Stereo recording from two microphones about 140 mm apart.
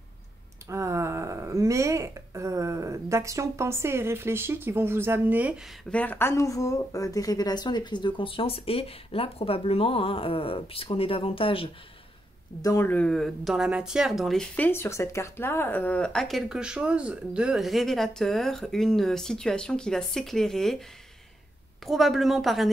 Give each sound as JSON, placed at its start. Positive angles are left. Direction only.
{"t": 0.7, "sound": "speech", "side_deg": -20}
{"t": 5.9, "sound": "speech", "side_deg": 10}
{"t": 12.6, "sound": "speech", "side_deg": 15}
{"t": 21.8, "sound": "speech", "side_deg": 0}